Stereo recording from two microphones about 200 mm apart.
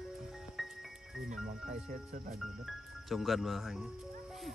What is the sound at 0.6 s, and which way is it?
Music, centre (ahead or behind).